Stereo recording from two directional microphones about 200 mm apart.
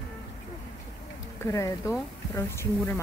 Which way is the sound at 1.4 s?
15° left (ahead or behind).